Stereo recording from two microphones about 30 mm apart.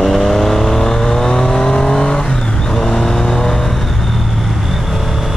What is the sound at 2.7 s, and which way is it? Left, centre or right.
Vehicle, centre.